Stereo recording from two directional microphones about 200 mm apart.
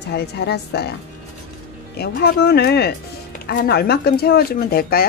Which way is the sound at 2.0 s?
55° left (ahead or behind).